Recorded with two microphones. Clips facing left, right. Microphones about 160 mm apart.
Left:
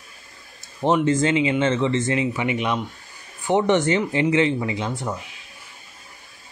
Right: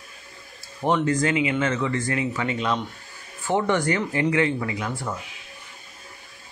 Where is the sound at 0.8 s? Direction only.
25° left (ahead or behind).